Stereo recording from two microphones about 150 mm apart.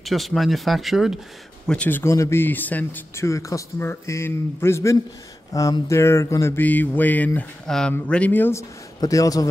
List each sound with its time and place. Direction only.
0.0 s speech: centre (ahead or behind)
1.7 s speech: 10° left (ahead or behind)